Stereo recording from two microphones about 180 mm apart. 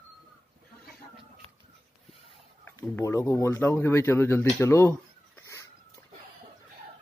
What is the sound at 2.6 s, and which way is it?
Speech, 15° left (ahead or behind).